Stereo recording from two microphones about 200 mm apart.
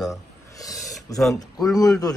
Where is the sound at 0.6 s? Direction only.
15° left (ahead or behind).